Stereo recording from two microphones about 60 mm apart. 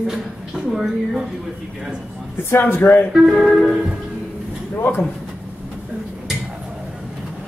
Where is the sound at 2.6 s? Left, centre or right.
Left.